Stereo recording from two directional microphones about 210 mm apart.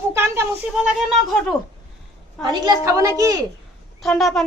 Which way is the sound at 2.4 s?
20° right (ahead or behind).